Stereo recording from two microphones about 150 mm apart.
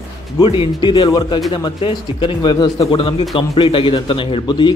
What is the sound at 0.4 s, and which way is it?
A man's voice, 35° left (ahead or behind).